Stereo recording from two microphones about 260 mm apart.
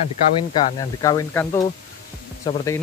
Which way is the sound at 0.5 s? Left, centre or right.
Centre.